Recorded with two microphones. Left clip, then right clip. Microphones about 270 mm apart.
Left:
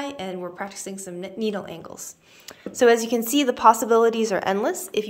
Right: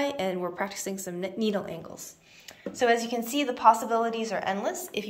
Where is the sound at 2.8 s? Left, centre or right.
Left.